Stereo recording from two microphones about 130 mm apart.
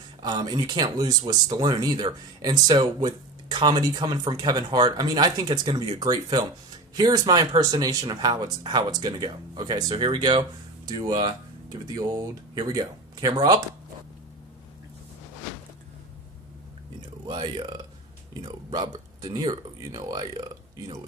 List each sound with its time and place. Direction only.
0.2 s speech: 35° right (ahead or behind)
17.3 s speech: 35° right (ahead or behind)